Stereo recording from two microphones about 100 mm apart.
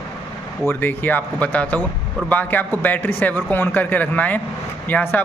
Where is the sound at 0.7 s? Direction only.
20° left (ahead or behind).